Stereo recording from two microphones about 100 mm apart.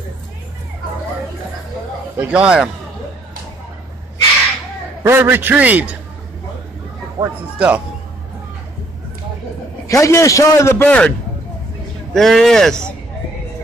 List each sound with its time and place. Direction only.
2.1 s a man's voice: 10° right (ahead or behind)
5.0 s a man's voice: 25° right (ahead or behind)
7.2 s a man's voice: 35° right (ahead or behind)
7.5 s a man's voice: 15° right (ahead or behind)
9.8 s a man's voice: 30° left (ahead or behind); by 12.9 s 5° left (ahead or behind)